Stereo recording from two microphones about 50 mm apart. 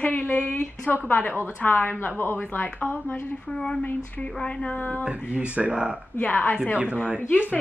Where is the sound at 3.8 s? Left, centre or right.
Left.